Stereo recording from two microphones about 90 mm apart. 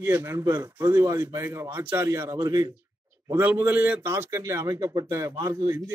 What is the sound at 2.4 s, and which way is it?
Speech, 45° right (ahead or behind).